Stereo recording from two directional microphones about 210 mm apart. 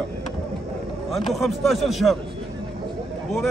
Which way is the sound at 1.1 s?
Centre (ahead or behind).